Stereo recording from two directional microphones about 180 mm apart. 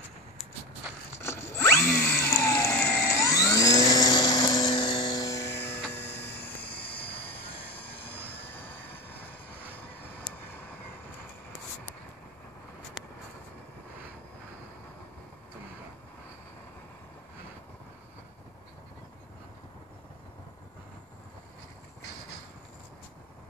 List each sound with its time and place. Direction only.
1.2 s drill: 15° left (ahead or behind)
5.9 s music: 10° left (ahead or behind)
6.9 s vehicle: 10° left (ahead or behind)
7.3 s vehicle: 65° left (ahead or behind)
8.5 s vehicle: 10° left (ahead or behind)